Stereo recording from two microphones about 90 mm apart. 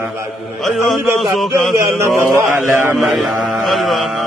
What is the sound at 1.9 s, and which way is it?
Chant, 30° right (ahead or behind).